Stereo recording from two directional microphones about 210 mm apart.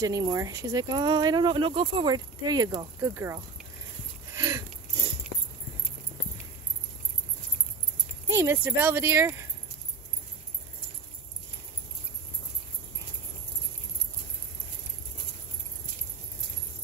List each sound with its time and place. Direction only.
0.0 s speech: 15° right (ahead or behind)
4.4 s a sound: 15° right (ahead or behind)
8.4 s speech: 10° right (ahead or behind)